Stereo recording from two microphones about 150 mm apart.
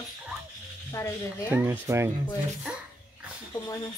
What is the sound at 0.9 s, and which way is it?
Speech, 20° left (ahead or behind).